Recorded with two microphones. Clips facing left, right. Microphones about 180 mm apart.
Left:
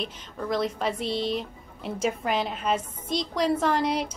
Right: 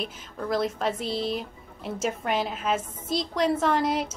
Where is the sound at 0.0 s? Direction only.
Centre (ahead or behind).